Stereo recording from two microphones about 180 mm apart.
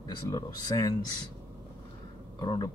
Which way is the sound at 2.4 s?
25° left (ahead or behind).